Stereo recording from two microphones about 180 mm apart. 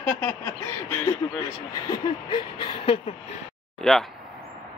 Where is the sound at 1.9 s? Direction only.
25° left (ahead or behind).